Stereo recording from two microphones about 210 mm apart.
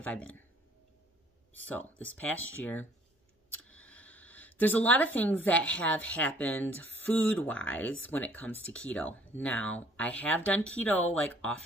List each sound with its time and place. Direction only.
0.0 s speech: 5° left (ahead or behind)
1.7 s speech: 5° left (ahead or behind)